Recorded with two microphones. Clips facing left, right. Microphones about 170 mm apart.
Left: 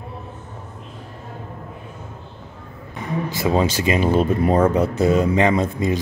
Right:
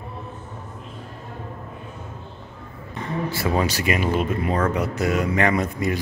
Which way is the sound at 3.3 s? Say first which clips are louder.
Left 4 dB; 20° left (ahead or behind).